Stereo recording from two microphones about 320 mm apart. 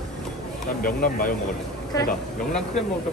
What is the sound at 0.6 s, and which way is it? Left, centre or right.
Speech, left.